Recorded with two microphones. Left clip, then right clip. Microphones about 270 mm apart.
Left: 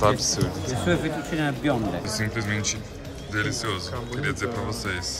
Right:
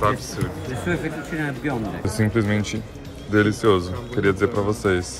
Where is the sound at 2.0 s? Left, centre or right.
Centre.